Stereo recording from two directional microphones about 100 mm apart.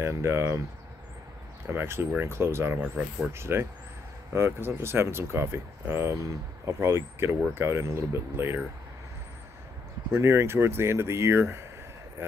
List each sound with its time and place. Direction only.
0.0 s speech: 25° right (ahead or behind)
1.7 s speech: 25° right (ahead or behind)
10.1 s speech: 25° right (ahead or behind)